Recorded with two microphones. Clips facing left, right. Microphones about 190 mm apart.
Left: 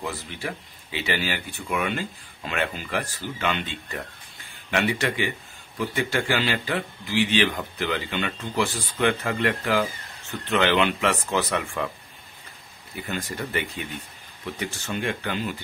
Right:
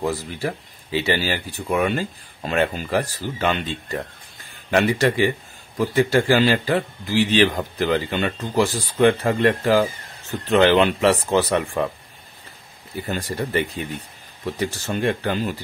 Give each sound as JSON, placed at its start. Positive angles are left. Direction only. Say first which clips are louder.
{"t": 0.0, "sound": "a man's voice", "louder": "right 7 dB", "side_deg": -40}
{"t": 12.9, "sound": "a man's voice", "louder": "right 5 dB", "side_deg": -35}